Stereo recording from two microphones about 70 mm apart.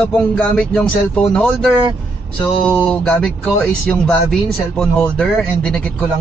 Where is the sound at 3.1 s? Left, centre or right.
Centre.